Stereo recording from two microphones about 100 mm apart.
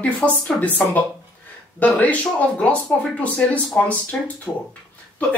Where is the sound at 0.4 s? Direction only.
15° left (ahead or behind).